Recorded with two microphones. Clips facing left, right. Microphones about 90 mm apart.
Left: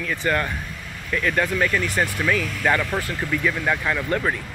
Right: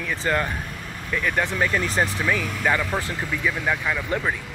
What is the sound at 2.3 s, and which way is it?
Speech, 15° right (ahead or behind).